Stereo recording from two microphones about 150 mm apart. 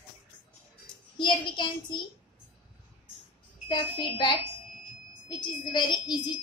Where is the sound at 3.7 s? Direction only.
35° left (ahead or behind).